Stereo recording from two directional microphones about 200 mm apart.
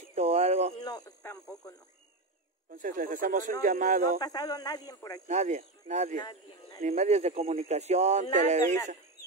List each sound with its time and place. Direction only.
0.1 s a sound: 30° right (ahead or behind)
0.7 s radio: 20° left (ahead or behind)
2.7 s speech: 40° right (ahead or behind)
4.2 s speech: 20° left (ahead or behind)
5.3 s speech: 35° right (ahead or behind)
6.2 s speech: 20° left (ahead or behind)
6.8 s speech: 35° right (ahead or behind)